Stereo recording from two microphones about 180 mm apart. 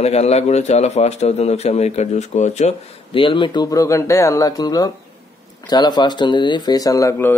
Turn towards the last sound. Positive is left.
turn(degrees=15)  # may be behind; listen again after turning